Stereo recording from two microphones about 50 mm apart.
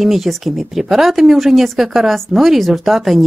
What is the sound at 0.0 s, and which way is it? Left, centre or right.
A woman's voice, centre.